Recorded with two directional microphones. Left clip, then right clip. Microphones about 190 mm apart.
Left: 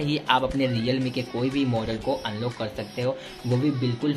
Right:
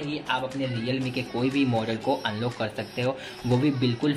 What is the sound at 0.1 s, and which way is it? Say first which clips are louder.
Speech: left 6 dB; 30° left (ahead or behind).